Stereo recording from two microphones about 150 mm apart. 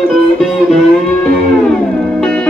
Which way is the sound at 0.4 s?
Centre (ahead or behind).